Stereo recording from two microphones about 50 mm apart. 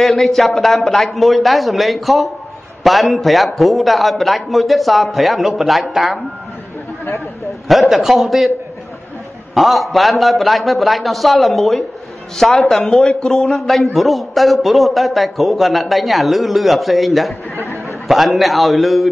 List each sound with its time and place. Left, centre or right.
0.0 s a man's voice: centre
7.6 s a man's voice: centre
9.5 s a man's voice: centre
13.0 s speech: centre
13.9 s a man's voice: centre